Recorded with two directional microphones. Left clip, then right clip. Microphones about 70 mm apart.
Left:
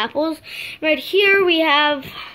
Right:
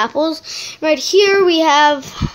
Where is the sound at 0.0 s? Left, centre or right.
Right.